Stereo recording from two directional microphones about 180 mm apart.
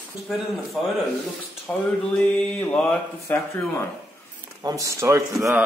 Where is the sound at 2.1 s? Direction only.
5° left (ahead or behind).